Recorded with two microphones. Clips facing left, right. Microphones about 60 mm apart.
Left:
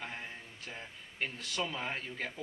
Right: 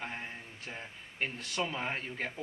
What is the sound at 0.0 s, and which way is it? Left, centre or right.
Speech, centre.